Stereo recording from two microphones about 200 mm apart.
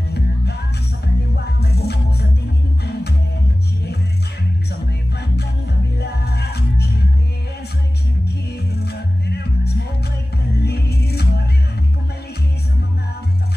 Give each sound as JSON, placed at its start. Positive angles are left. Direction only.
{"t": 1.0, "sound": "music", "side_deg": 55}
{"t": 5.9, "sound": "music", "side_deg": 55}
{"t": 8.5, "sound": "music", "side_deg": 55}